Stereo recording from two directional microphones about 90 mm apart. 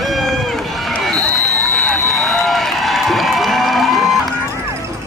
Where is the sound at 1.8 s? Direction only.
5° left (ahead or behind).